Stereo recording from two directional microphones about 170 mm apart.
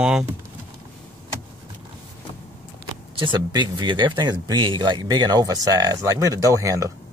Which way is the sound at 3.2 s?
25° right (ahead or behind).